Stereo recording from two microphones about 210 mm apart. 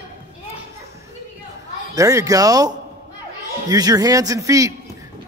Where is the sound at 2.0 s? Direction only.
15° right (ahead or behind).